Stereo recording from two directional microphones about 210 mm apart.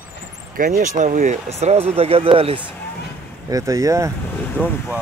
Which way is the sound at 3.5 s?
15° right (ahead or behind).